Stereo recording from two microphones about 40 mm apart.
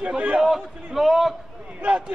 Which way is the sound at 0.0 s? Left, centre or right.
Right.